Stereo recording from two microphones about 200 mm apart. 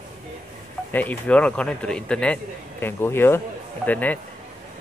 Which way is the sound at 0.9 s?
10° left (ahead or behind).